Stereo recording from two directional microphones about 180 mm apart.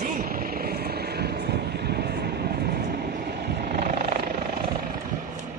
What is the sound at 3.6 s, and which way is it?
Helicopter, 55° right (ahead or behind).